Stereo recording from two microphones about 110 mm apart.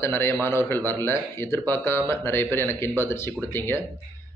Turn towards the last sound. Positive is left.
turn(degrees=20)  # may be behind; listen again after turning